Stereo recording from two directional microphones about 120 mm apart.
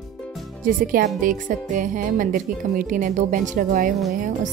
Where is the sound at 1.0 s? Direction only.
90° right.